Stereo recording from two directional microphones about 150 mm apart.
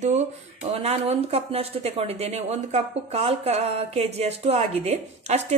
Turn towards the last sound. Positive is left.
turn(degrees=-50)  # may be behind; listen again after turning